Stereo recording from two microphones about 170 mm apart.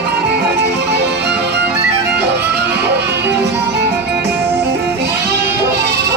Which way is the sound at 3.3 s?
90° right.